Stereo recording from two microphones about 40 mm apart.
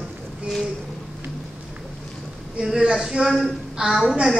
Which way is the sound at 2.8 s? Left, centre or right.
Centre.